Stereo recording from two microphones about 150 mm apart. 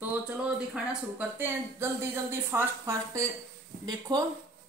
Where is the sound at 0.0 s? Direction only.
10° right (ahead or behind).